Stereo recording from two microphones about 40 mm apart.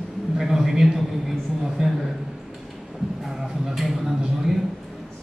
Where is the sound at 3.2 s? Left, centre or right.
Centre.